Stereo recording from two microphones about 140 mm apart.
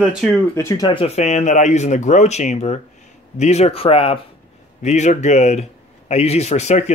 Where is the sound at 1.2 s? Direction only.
55° left (ahead or behind).